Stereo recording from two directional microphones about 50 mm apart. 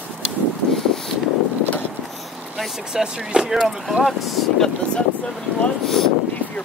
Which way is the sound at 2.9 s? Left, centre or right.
Centre.